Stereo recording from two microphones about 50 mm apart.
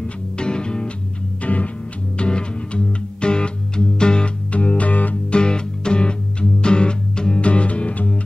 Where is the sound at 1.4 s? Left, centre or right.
Left.